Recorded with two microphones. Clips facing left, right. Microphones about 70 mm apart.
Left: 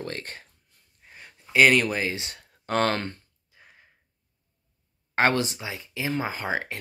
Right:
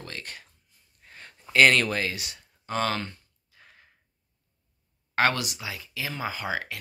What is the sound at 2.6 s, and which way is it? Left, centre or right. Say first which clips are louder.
Speech: left 4 dB; left.